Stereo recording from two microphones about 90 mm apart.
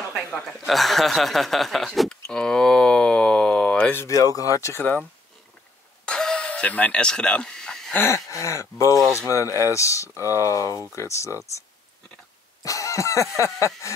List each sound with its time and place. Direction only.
0.3 s chuckle: 5° left (ahead or behind)
3.9 s speech: 30° left (ahead or behind)
6.0 s a sound: 10° left (ahead or behind)
7.9 s speech: 30° left (ahead or behind)
12.6 s a sound: 35° left (ahead or behind)
13.8 s speech: 35° left (ahead or behind)